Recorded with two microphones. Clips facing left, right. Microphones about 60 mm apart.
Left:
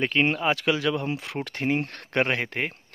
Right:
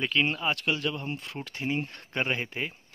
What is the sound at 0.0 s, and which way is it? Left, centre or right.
Speech, left.